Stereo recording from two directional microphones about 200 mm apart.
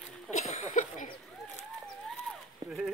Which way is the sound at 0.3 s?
35° left (ahead or behind).